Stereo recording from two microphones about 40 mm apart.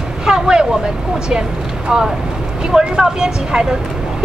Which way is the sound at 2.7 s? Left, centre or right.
Centre.